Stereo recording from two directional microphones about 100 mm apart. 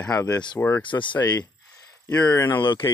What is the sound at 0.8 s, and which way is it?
Speech, 55° left (ahead or behind).